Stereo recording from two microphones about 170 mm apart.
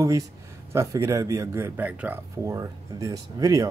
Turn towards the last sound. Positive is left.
turn(degrees=-20)  # may be behind; listen again after turning